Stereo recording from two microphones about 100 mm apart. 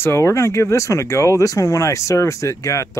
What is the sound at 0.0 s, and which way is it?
Speech, 30° left (ahead or behind).